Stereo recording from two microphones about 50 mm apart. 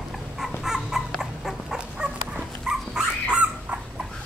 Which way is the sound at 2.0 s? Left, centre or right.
Centre.